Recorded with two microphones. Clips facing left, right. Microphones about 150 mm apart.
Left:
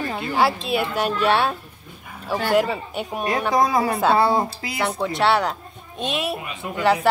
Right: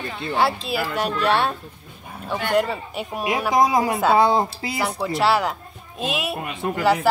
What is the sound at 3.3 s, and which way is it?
Speech, 15° right (ahead or behind).